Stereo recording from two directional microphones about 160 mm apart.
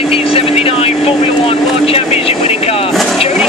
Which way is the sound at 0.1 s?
35° left (ahead or behind).